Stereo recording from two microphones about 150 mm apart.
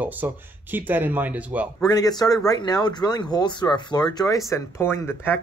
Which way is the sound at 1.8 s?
25° left (ahead or behind).